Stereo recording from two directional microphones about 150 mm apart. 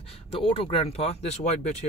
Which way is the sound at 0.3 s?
40° left (ahead or behind).